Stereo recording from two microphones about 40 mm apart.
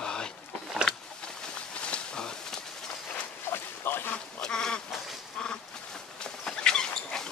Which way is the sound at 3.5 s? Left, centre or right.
Left.